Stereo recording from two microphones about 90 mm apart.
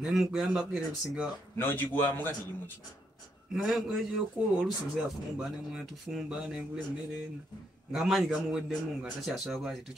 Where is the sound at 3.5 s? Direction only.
5° right (ahead or behind).